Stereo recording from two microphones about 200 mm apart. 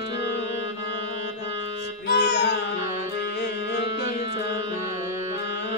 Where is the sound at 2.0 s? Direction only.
60° left (ahead or behind).